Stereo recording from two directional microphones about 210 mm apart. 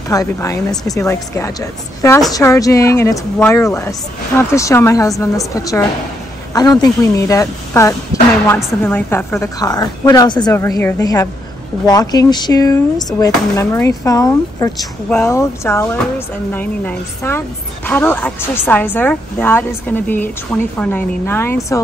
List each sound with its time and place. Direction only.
0.1 s speech: 15° left (ahead or behind)